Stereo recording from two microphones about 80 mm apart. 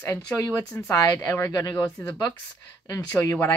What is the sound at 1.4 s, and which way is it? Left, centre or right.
Speech, left.